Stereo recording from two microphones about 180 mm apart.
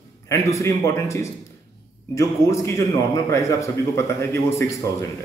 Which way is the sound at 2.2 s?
15° left (ahead or behind).